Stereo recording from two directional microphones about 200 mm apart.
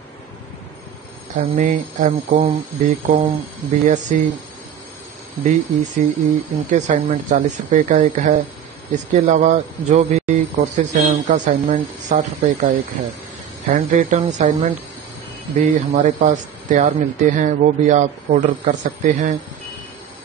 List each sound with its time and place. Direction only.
1.3 s speech: 40° right (ahead or behind)
5.4 s speech: 40° right (ahead or behind)